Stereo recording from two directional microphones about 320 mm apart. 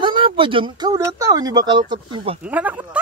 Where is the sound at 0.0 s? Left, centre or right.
Centre.